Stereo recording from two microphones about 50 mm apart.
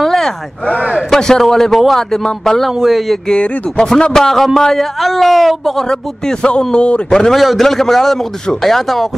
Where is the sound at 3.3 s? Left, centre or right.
Centre.